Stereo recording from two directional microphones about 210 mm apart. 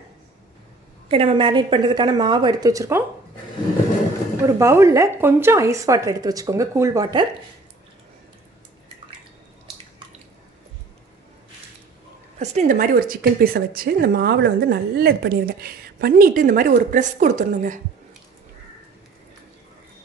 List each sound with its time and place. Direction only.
1.0 s a woman's voice: 25° right (ahead or behind)
4.5 s a woman's voice: 15° right (ahead or behind)
12.4 s a woman's voice: 35° right (ahead or behind)